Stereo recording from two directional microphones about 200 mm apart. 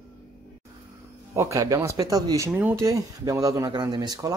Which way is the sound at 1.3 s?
15° right (ahead or behind).